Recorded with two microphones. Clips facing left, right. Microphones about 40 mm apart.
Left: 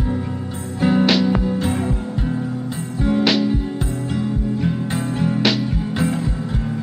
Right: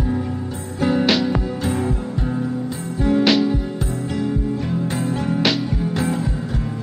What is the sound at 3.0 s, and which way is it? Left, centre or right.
Music, centre.